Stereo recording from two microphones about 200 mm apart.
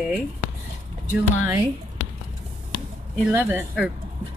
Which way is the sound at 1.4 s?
20° right (ahead or behind).